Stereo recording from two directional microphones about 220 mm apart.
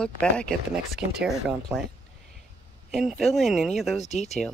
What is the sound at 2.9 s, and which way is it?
Speech, centre (ahead or behind).